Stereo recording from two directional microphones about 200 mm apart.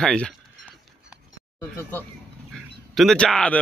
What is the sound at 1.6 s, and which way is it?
Speech, 10° left (ahead or behind).